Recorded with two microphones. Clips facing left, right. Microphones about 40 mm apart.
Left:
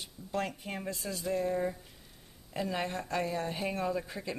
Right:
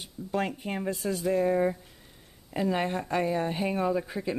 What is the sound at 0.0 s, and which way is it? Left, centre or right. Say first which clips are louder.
Speech: right 5 dB; centre.